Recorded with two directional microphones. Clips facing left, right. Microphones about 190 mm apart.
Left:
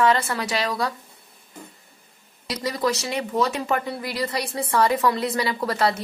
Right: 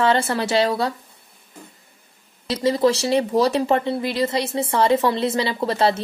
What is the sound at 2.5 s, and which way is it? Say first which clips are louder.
Speech: right 7 dB; 25° right (ahead or behind).